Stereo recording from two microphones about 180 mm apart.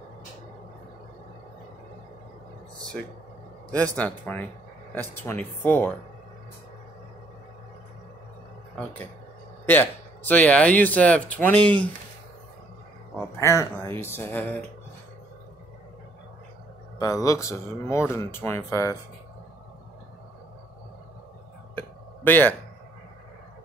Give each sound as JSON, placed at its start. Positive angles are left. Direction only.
{"t": 3.7, "sound": "speech", "side_deg": 5}
{"t": 9.7, "sound": "speech", "side_deg": 10}
{"t": 13.4, "sound": "speech", "side_deg": 15}
{"t": 17.0, "sound": "speech", "side_deg": 20}
{"t": 21.7, "sound": "a sound", "side_deg": 10}